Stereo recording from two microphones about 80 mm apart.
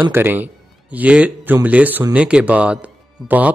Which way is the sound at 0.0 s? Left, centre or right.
Right.